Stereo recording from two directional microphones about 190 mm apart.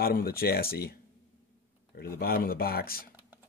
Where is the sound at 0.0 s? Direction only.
50° left (ahead or behind).